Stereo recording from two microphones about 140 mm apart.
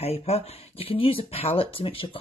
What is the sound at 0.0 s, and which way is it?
Speech, 45° left (ahead or behind).